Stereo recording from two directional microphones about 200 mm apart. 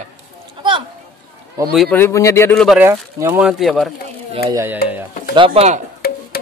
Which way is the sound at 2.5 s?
5° right (ahead or behind).